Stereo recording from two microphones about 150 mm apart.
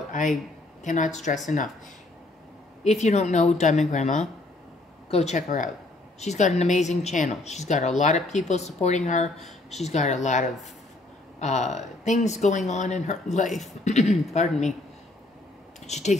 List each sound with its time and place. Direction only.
0.8 s a woman's voice: 55° left (ahead or behind)
2.8 s speech: 50° left (ahead or behind)
15.9 s speech: 50° left (ahead or behind)